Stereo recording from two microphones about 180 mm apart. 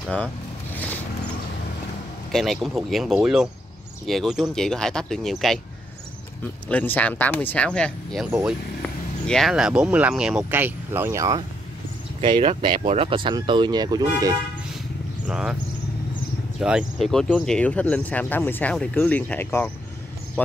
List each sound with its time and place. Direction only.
2.3 s speech: centre (ahead or behind)
6.7 s speech: 10° left (ahead or behind)
9.3 s speech: centre (ahead or behind); by 14.3 s 20° right (ahead or behind)
15.2 s speech: 5° right (ahead or behind)
16.5 s speech: 5° right (ahead or behind); by 19.7 s 10° left (ahead or behind)